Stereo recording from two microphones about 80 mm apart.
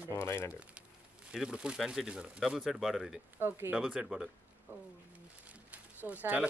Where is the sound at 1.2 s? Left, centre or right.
Centre.